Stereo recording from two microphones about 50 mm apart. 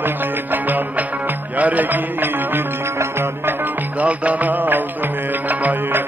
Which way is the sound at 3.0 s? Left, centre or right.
Right.